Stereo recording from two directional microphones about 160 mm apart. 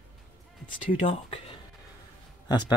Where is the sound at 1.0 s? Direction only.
35° left (ahead or behind).